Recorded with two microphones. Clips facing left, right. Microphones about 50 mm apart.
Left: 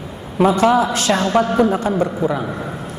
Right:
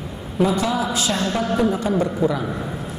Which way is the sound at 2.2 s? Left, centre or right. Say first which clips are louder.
Left 1 dB; left.